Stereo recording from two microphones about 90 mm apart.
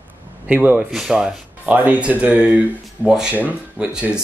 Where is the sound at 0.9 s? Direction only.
5° right (ahead or behind).